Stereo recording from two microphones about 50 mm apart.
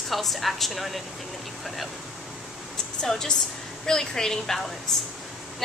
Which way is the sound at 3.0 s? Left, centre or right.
Centre.